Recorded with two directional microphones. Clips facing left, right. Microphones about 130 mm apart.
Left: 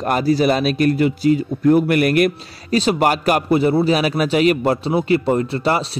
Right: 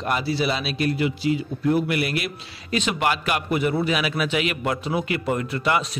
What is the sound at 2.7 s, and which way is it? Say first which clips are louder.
A man's voice: left 7 dB; 35° left (ahead or behind).